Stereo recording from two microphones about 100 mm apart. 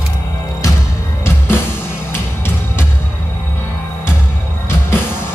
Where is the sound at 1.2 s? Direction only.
25° left (ahead or behind).